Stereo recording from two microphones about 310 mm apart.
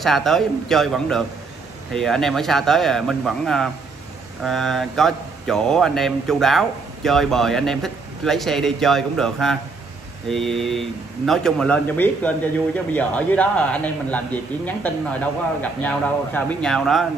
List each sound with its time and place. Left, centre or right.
0.0 s speech: centre